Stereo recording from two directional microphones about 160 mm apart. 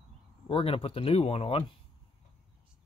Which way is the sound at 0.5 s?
35° left (ahead or behind).